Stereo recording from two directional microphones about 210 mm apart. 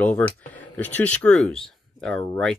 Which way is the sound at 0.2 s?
5° left (ahead or behind).